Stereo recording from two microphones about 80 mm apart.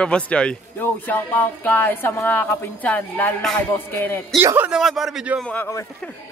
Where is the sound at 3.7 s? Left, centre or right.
Left.